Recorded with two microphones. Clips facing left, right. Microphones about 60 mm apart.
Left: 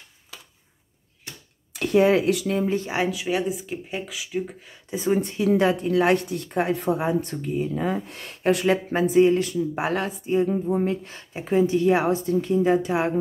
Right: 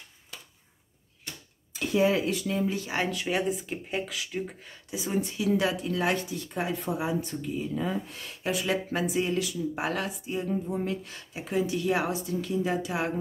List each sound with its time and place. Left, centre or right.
1.7 s speech: left
2.6 s a woman's voice: left
2.9 s speech: centre
4.9 s speech: left
8.6 s a woman's voice: left